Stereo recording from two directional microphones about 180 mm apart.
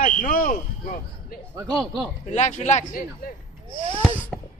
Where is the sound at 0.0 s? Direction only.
50° left (ahead or behind).